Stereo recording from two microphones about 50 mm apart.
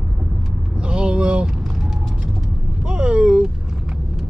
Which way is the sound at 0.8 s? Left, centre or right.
Centre.